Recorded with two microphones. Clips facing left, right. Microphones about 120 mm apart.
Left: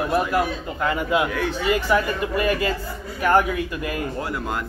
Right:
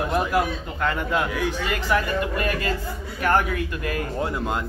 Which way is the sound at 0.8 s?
5° left (ahead or behind).